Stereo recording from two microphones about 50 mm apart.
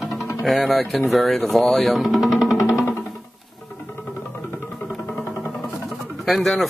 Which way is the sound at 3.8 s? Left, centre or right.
Left.